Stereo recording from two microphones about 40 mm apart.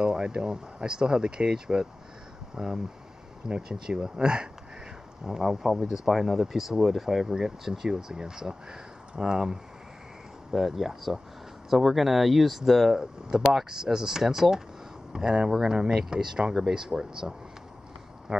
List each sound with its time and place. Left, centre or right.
0.0 s speech: centre
10.5 s speech: centre
18.3 s a sound: right